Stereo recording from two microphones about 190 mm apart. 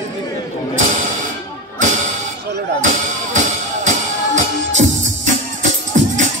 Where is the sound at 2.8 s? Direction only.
40° right (ahead or behind).